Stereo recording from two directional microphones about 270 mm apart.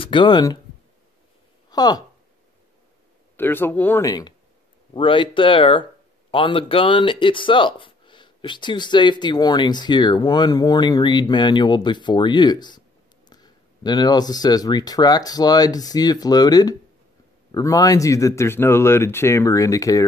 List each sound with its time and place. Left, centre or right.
0.0 s speech: centre
1.7 s speech: centre
3.3 s speech: centre